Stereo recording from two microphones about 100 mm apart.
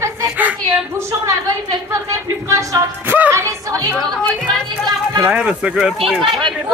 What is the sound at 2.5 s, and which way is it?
Speech, 35° right (ahead or behind).